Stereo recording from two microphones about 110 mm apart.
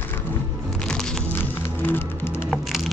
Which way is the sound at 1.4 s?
20° left (ahead or behind).